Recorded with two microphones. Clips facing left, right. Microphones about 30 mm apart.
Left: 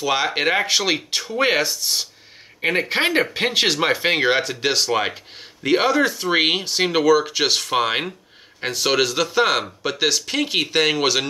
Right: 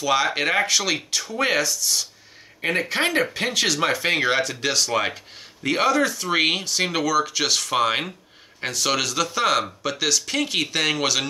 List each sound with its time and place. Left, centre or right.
0.0 s speech: centre; by 2.0 s left
2.6 s speech: left